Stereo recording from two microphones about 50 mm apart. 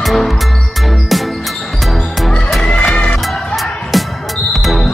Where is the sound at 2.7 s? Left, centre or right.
Left.